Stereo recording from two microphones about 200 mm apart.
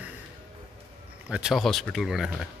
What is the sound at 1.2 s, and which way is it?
Speech, 5° right (ahead or behind).